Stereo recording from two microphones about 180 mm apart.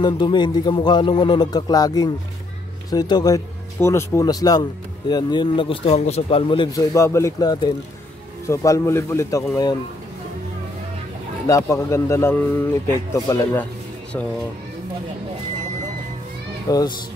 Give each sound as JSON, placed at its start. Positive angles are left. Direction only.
{"t": 0.0, "sound": "a man's voice", "side_deg": 25}
{"t": 11.4, "sound": "a man's voice", "side_deg": 15}
{"t": 16.6, "sound": "a child's voice", "side_deg": 20}